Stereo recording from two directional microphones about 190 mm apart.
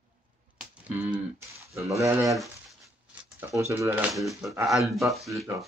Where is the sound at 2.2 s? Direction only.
Centre (ahead or behind).